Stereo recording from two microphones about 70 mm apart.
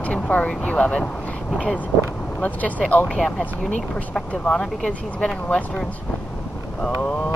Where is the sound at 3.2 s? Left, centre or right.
Centre.